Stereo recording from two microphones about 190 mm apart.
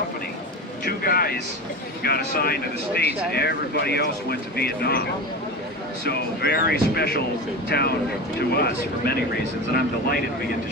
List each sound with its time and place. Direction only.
0.8 s a sound: 50° left (ahead or behind)
2.0 s speech: 55° left (ahead or behind)
6.0 s speech: 55° left (ahead or behind)